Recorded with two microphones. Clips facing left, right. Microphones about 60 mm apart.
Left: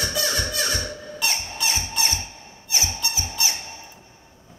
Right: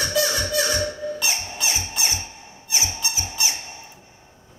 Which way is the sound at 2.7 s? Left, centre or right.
Right.